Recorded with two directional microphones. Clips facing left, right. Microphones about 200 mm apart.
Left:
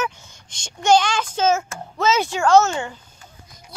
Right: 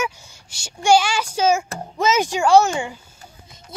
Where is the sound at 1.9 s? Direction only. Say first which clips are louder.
Right 1 dB; 15° right (ahead or behind).